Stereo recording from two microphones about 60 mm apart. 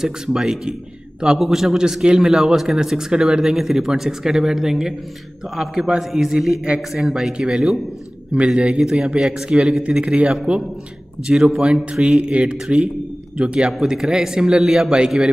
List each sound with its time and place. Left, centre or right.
0.0 s a man's voice: centre
13.7 s a man's voice: centre